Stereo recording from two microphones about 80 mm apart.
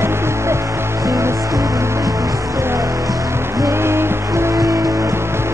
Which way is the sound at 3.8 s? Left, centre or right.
Right.